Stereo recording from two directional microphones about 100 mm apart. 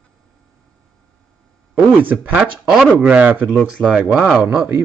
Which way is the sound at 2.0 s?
15° right (ahead or behind).